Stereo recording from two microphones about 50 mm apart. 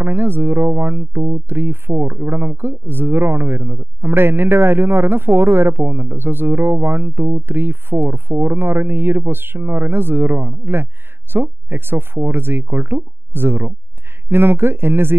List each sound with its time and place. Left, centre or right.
0.0 s speech: right